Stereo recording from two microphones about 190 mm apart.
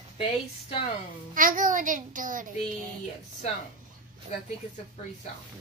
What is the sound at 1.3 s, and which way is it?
Child singing, 45° right (ahead or behind).